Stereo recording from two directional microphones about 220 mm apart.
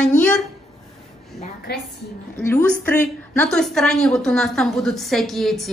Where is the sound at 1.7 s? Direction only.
45° left (ahead or behind).